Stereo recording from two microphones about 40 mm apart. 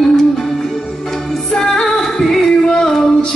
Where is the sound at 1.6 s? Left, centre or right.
Centre.